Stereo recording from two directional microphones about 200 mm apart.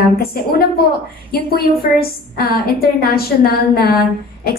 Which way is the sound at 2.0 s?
50° left (ahead or behind).